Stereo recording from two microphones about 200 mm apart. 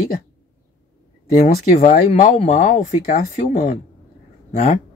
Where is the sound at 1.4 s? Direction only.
35° left (ahead or behind).